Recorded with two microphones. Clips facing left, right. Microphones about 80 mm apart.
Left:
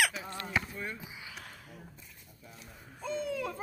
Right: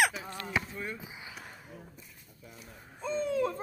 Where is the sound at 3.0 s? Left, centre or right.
Right.